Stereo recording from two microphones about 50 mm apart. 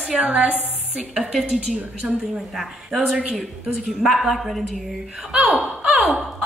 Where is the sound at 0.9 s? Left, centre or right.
Centre.